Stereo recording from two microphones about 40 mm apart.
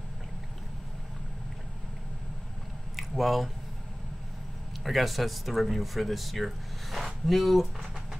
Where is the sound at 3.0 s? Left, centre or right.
Centre.